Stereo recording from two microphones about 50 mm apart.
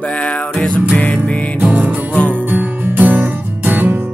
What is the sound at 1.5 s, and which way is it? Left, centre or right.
Music, right.